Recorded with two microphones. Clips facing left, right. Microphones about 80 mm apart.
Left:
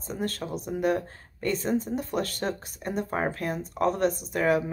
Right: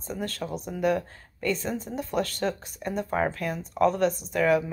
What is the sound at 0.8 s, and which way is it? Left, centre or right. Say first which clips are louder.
Speech: right 2 dB; left.